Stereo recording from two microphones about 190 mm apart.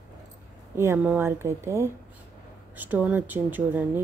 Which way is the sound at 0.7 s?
10° right (ahead or behind).